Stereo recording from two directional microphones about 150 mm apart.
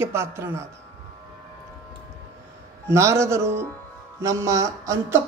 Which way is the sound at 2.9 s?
20° right (ahead or behind).